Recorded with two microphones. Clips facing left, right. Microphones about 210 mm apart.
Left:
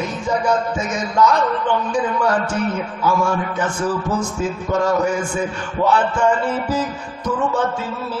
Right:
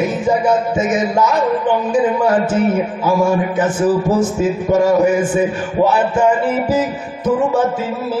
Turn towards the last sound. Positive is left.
turn(degrees=-10)  # may be behind; listen again after turning